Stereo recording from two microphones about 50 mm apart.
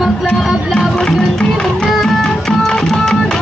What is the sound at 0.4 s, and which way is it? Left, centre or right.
Music, centre.